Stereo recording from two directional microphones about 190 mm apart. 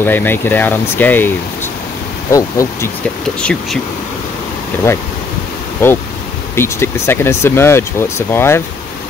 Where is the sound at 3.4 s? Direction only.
5° left (ahead or behind).